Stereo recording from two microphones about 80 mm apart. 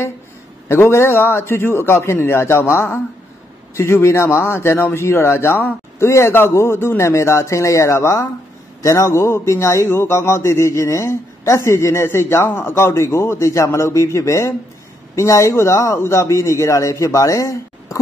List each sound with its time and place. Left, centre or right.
0.7 s a man's voice: left